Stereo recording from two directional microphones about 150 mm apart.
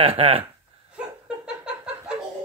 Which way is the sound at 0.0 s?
35° right (ahead or behind).